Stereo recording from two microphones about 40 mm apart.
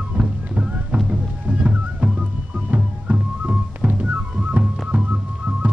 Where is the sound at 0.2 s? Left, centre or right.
Right.